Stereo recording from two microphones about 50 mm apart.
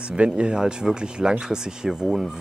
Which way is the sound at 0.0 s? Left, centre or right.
Centre.